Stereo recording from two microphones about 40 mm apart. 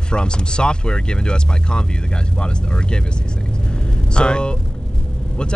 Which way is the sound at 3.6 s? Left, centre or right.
Left.